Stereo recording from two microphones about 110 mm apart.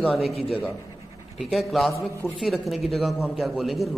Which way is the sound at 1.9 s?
25° left (ahead or behind).